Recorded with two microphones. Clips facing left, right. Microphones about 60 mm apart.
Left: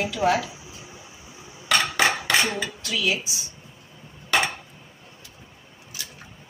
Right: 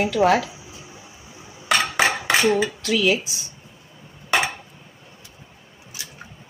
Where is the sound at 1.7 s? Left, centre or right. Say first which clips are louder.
Right 2 dB; right.